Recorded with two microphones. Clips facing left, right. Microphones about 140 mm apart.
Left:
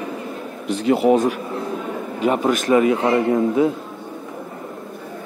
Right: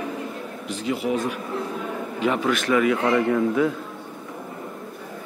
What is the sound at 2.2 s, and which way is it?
Speech, 45° left (ahead or behind).